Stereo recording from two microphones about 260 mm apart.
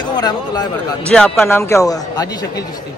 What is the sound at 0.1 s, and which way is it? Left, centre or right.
Speech, centre.